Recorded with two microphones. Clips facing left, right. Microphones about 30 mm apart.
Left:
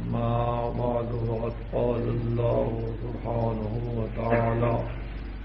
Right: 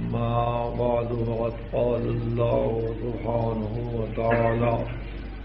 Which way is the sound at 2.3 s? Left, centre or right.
Centre.